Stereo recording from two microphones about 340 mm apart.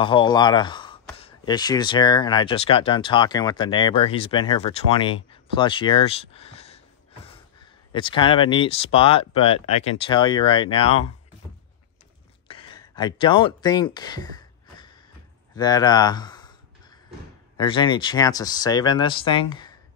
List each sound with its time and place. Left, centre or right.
0.0 s speech: centre
7.9 s speech: centre
12.4 s a sound: centre
17.6 s speech: centre